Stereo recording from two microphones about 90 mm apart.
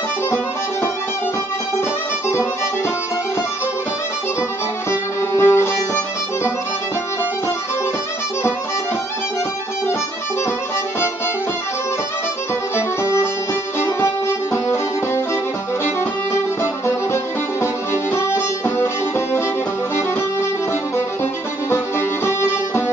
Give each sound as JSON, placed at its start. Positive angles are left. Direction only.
{"t": 5.3, "sound": "music", "side_deg": 30}
{"t": 12.7, "sound": "music", "side_deg": 30}
{"t": 16.8, "sound": "music", "side_deg": 30}
{"t": 22.2, "sound": "music", "side_deg": 30}